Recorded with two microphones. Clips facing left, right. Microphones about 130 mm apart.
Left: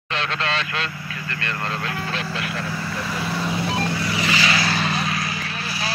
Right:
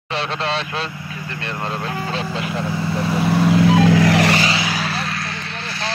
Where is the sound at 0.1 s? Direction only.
35° right (ahead or behind).